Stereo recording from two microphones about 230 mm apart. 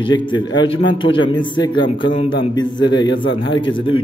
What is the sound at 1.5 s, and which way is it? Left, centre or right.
A man's voice, left.